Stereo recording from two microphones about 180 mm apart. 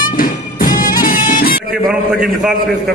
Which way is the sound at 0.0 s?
50° left (ahead or behind).